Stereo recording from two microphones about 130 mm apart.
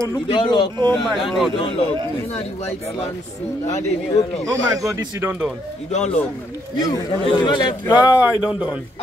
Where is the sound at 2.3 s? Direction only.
50° left (ahead or behind).